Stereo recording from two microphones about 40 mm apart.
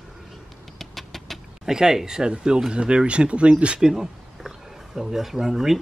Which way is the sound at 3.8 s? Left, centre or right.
Centre.